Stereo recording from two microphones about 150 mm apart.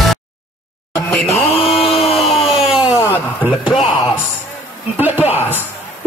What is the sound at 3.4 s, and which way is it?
Speech, 5° right (ahead or behind).